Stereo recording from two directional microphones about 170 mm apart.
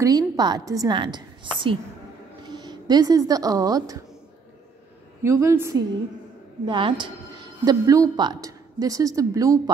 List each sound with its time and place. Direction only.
0.0 s a woman's voice: 25° right (ahead or behind)
5.2 s a woman's voice: 15° right (ahead or behind)
6.6 s speech: 25° right (ahead or behind)